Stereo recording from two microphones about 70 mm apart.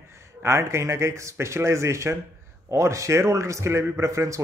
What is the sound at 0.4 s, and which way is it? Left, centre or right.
A man's voice, right.